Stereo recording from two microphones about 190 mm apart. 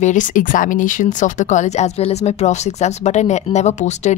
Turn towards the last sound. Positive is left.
turn(degrees=40)  # may be behind; listen again after turning